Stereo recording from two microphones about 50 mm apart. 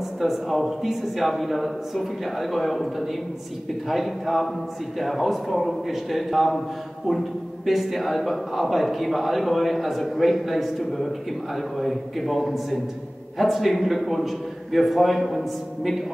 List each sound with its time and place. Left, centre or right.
0.2 s a man's voice: centre